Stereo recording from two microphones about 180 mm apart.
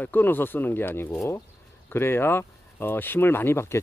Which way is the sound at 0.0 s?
10° left (ahead or behind).